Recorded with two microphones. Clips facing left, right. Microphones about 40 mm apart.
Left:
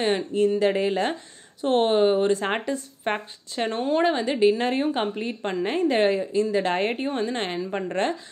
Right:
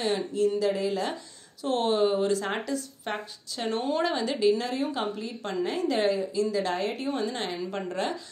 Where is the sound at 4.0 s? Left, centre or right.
Left.